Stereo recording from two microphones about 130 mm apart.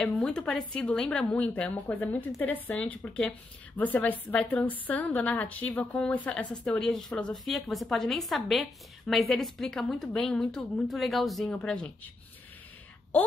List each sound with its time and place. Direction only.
0.0 s a woman's voice: 5° left (ahead or behind)